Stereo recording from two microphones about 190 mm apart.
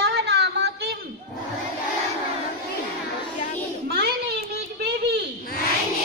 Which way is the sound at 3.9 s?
55° right (ahead or behind).